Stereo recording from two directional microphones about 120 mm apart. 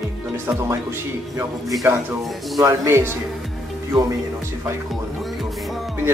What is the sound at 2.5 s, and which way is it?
Speech, 25° right (ahead or behind).